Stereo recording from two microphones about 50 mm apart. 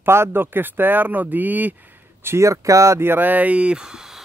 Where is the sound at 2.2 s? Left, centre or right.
Right.